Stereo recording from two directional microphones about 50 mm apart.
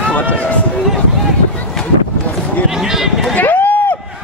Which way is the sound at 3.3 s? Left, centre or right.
Left.